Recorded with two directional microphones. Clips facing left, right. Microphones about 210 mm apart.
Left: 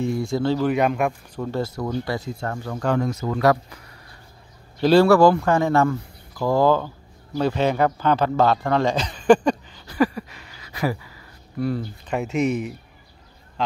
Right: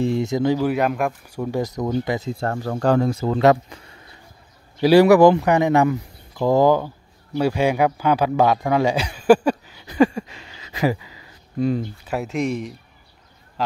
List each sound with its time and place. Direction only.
0.0 s a man's voice: 25° right (ahead or behind); by 1.1 s centre (ahead or behind)
1.3 s a man's voice: 15° right (ahead or behind)
2.4 s speech: 40° right (ahead or behind)
4.8 s a man's voice: 15° right (ahead or behind)
9.8 s a sound: 25° right (ahead or behind)
12.1 s speech: centre (ahead or behind)